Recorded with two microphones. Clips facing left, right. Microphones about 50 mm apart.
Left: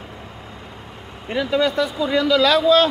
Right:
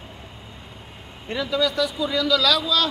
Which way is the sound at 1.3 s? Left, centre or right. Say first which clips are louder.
Left 5 dB; centre.